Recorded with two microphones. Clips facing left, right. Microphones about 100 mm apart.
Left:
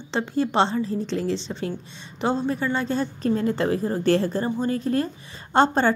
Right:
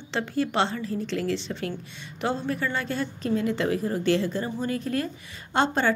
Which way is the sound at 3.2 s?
40° left (ahead or behind).